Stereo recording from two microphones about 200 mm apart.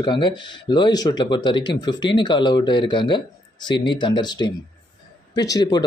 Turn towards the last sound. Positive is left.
turn(degrees=20)  # may be behind; listen again after turning